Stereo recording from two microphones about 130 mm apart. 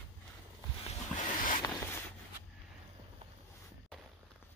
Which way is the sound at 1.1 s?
90° left.